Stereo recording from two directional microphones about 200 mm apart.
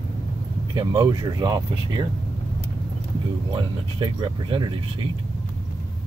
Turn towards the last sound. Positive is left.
turn(degrees=-25)  # may be behind; listen again after turning